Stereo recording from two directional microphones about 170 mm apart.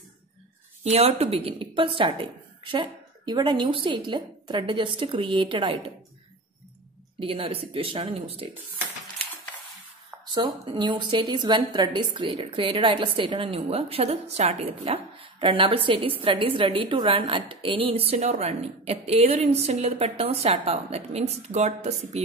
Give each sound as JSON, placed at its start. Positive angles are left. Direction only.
{"t": 0.8, "sound": "a woman's voice", "side_deg": -35}
{"t": 7.2, "sound": "a woman's voice", "side_deg": -30}
{"t": 10.2, "sound": "a woman's voice", "side_deg": -25}